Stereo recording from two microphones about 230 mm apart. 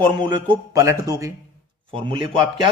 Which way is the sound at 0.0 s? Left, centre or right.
Centre.